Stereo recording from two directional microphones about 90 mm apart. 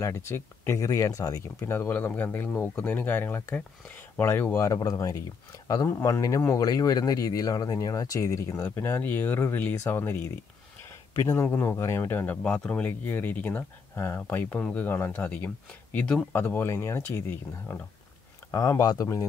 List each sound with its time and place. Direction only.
0.0 s speech: 30° left (ahead or behind)
1.6 s speech: 25° left (ahead or behind)
4.6 s speech: 40° left (ahead or behind); by 16.3 s 15° left (ahead or behind)
16.3 s speech: 25° left (ahead or behind)
18.5 s speech: 40° left (ahead or behind)